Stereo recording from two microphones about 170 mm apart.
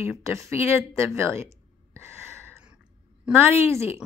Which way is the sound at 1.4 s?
15° right (ahead or behind).